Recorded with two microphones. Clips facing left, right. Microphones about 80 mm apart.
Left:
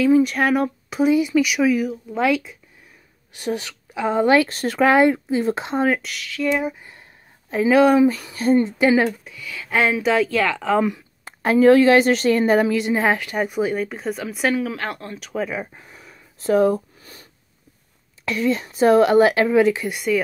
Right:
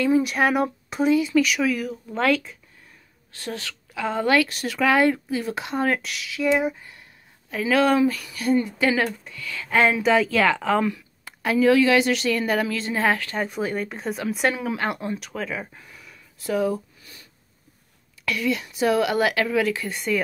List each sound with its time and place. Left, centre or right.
0.0 s speech: centre
1.1 s speech: centre
3.3 s speech: centre
4.5 s a woman's voice: left
4.9 s speech: left
5.9 s speech: centre
7.5 s speech: left
8.7 s speech: centre
9.2 s speech: centre
11.2 s a woman's voice: left
12.5 s speech: centre
15.3 s speech: centre
15.8 s a sound: left
18.2 s speech: left